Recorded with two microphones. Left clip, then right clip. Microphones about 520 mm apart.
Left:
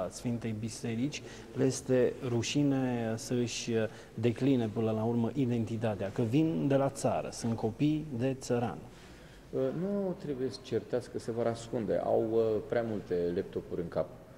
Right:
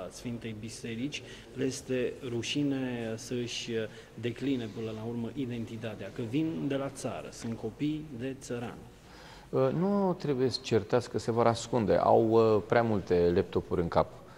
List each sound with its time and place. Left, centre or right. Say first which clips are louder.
0.2 s speech: left 3 dB; left
10.2 s speech: right 6 dB; right